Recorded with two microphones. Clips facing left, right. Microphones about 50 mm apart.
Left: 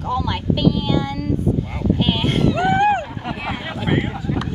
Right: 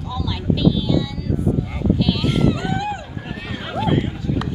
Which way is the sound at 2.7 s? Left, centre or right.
Left.